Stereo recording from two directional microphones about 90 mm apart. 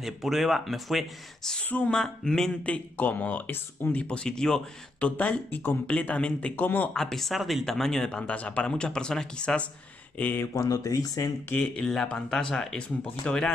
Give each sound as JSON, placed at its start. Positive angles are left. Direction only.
{"t": 0.0, "sound": "speech", "side_deg": 0}
{"t": 2.0, "sound": "speech", "side_deg": 5}
{"t": 4.1, "sound": "speech", "side_deg": 10}
{"t": 6.9, "sound": "speech", "side_deg": 5}
{"t": 10.5, "sound": "speech", "side_deg": 40}
{"t": 11.7, "sound": "speech", "side_deg": 5}